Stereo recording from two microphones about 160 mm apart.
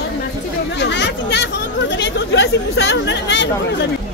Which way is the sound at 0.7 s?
90° left.